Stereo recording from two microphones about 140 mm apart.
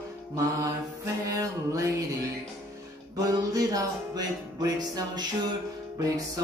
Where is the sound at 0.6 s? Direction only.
25° right (ahead or behind).